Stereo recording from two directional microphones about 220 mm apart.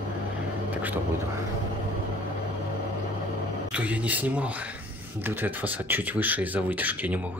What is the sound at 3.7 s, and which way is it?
Speech, 5° right (ahead or behind).